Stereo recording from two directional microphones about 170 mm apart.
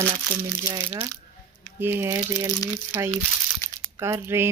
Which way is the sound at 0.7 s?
20° right (ahead or behind).